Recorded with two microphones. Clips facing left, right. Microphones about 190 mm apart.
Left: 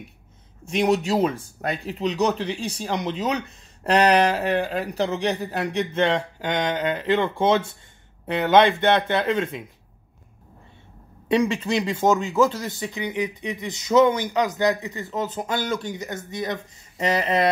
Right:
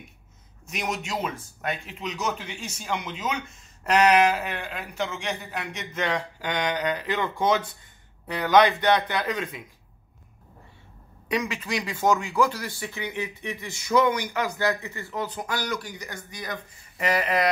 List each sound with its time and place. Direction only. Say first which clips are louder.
0.7 s speech: left 10 dB; 30° left (ahead or behind)
11.2 s speech: left 7 dB; 25° left (ahead or behind)